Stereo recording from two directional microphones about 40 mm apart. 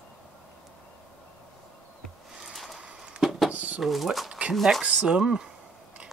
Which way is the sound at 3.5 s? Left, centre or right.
Right.